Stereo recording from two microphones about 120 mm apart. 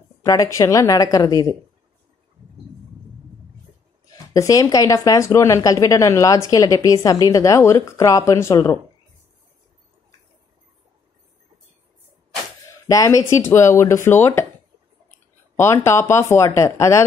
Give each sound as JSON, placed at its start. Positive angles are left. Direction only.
{"t": 0.2, "sound": "speech", "side_deg": 30}
{"t": 4.3, "sound": "speech", "side_deg": 30}
{"t": 12.8, "sound": "speech", "side_deg": 30}
{"t": 15.5, "sound": "speech", "side_deg": 20}